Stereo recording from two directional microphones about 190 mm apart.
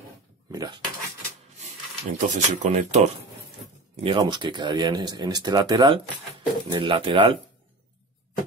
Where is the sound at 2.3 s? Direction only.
40° right (ahead or behind).